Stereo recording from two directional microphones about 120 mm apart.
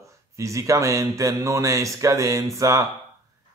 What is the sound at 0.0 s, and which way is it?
Speech, 25° right (ahead or behind).